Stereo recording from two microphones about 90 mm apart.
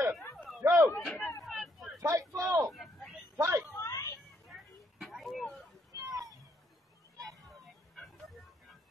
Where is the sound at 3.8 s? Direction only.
40° left (ahead or behind).